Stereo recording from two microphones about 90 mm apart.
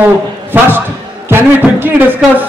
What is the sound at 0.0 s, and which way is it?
A man's voice, 25° right (ahead or behind).